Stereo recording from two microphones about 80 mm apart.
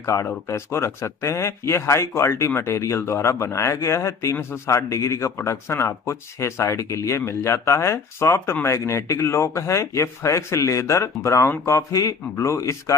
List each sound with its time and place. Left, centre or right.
0.0 s speech: left